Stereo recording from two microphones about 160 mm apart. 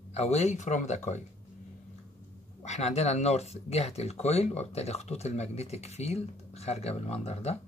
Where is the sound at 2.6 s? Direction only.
45° left (ahead or behind).